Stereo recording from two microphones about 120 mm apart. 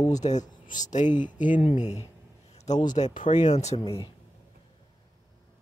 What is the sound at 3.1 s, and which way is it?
Speech, 90° left.